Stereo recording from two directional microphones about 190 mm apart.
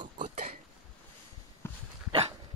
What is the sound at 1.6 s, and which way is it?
Dog, 15° left (ahead or behind).